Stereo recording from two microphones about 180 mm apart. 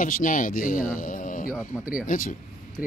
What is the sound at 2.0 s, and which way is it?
Speech, 50° left (ahead or behind).